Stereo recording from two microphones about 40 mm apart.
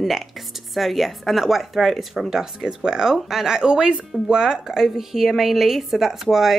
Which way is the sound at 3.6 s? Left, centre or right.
Right.